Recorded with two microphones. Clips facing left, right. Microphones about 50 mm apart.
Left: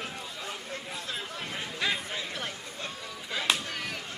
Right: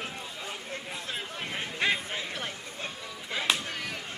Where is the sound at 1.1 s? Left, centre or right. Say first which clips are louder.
Right 1 dB; right.